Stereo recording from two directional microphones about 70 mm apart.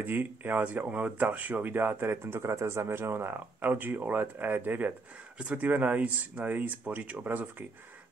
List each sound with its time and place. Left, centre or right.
0.0 s speech: right